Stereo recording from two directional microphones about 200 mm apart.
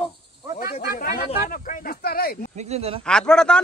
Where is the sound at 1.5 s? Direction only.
45° left (ahead or behind).